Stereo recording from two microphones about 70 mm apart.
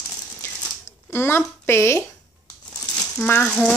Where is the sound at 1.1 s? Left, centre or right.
Left.